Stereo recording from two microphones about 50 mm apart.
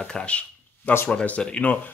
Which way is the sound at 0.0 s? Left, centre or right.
Centre.